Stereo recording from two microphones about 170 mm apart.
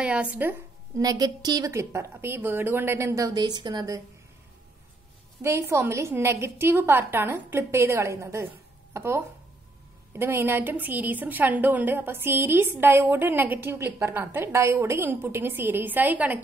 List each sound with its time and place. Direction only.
0.0 s a woman's voice: 5° right (ahead or behind)
5.4 s a woman's voice: 15° right (ahead or behind)